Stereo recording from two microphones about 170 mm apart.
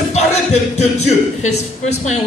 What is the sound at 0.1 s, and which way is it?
Speech, 40° left (ahead or behind).